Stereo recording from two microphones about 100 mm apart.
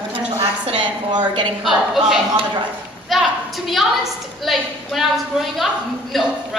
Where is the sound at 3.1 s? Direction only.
Centre (ahead or behind).